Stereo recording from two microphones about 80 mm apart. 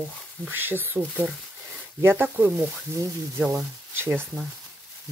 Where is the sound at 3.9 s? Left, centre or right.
Right.